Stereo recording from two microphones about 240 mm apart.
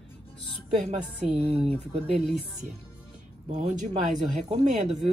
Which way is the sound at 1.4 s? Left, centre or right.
Right.